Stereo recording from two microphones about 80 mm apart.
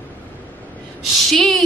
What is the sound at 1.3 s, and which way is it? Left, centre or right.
Speech, centre.